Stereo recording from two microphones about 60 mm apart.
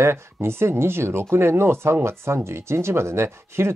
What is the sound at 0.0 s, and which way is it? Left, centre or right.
Speech, right.